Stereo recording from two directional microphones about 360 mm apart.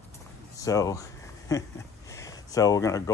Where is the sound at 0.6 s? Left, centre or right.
Centre.